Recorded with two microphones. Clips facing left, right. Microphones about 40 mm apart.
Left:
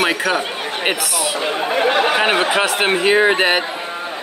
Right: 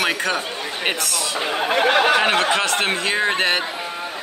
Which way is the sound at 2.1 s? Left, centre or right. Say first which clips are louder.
Left 2 dB; centre.